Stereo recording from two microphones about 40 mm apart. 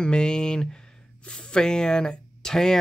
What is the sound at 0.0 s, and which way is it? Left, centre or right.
Speech, left.